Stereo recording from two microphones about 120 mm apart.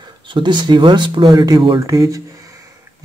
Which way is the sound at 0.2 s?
40° right (ahead or behind).